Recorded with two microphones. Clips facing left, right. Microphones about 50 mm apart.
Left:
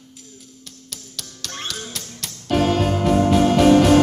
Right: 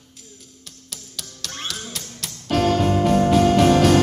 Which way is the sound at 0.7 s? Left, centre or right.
Centre.